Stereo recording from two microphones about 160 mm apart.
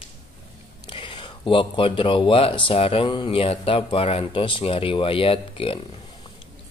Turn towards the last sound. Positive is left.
turn(degrees=35)  # may be behind; listen again after turning